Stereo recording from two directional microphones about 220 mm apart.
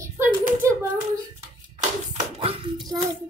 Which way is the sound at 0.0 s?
10° right (ahead or behind).